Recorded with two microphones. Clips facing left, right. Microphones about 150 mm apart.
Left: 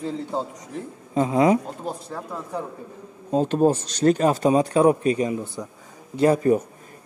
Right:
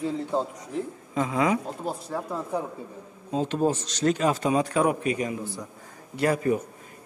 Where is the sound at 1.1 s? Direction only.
35° left (ahead or behind).